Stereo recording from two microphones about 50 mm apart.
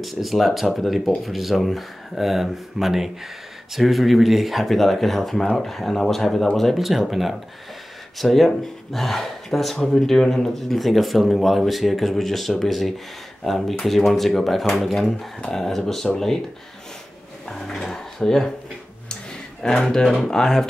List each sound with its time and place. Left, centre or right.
0.0 s speech: centre
17.5 s speech: centre
19.6 s speech: centre